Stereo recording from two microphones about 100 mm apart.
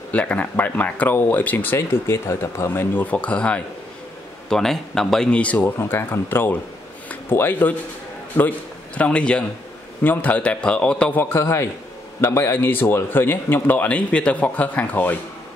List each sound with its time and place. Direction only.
0.1 s a man's voice: 15° left (ahead or behind)
5.8 s a man's voice: 25° left (ahead or behind)
11.1 s a man's voice: 25° left (ahead or behind)